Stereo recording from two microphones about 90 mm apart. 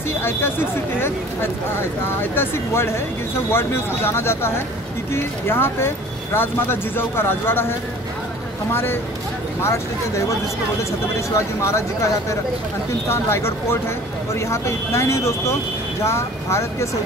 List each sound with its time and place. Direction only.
0.2 s speech: 25° left (ahead or behind)
8.7 s speech: 25° left (ahead or behind)